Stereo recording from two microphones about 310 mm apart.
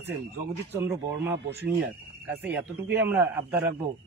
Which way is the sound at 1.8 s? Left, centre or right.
Centre.